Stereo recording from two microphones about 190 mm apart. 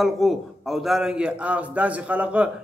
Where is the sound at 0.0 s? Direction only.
Centre (ahead or behind).